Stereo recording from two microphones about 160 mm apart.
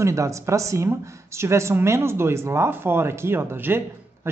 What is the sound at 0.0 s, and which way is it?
Speech, 20° right (ahead or behind).